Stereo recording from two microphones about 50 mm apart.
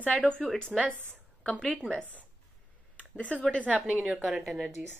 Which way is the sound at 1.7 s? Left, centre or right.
Left.